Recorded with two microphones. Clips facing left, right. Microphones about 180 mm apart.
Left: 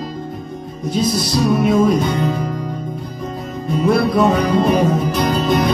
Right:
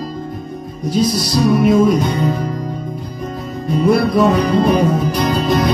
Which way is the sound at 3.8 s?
Centre (ahead or behind).